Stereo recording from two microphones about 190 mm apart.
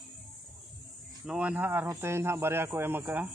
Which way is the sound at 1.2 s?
5° right (ahead or behind).